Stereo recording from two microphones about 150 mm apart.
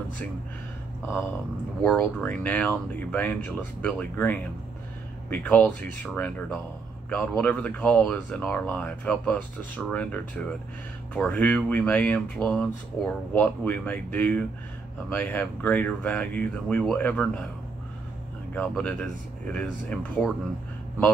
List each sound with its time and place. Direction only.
1.8 s speech: 10° left (ahead or behind)
18.5 s speech: 10° left (ahead or behind)